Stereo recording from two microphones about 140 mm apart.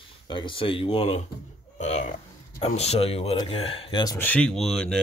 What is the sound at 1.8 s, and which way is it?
Speech, 55° left (ahead or behind).